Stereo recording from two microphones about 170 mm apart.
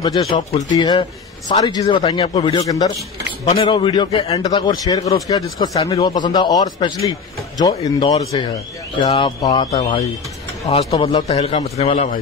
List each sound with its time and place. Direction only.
0.0 s a man's voice: 20° left (ahead or behind)
10.7 s a man's voice: 35° left (ahead or behind)